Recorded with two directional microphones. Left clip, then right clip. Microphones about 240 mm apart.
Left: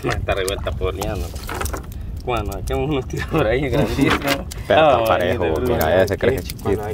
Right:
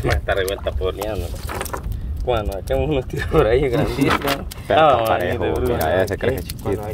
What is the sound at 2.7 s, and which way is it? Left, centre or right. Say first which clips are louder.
Speech: right 2 dB; centre.